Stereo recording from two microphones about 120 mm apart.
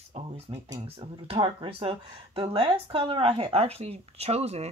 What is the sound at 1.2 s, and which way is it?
Speech, 50° right (ahead or behind).